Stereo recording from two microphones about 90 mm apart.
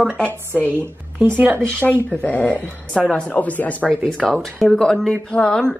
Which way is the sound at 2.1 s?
15° left (ahead or behind).